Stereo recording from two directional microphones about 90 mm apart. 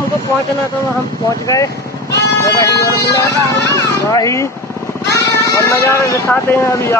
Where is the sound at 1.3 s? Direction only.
40° left (ahead or behind).